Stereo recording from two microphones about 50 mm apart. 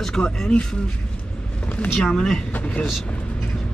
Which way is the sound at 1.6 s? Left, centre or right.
Left.